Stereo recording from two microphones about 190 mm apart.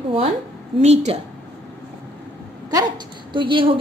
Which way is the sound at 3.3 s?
25° right (ahead or behind).